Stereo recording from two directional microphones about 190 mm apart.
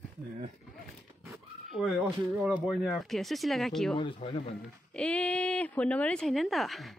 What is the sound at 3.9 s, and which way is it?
Speech, 30° left (ahead or behind).